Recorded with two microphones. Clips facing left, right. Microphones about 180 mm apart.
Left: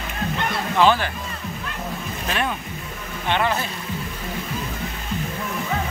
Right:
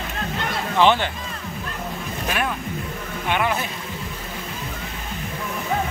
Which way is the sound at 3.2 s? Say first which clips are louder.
Left 1 dB; 5° right (ahead or behind).